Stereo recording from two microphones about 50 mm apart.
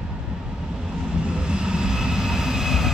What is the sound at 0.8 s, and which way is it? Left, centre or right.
Vehicle, centre.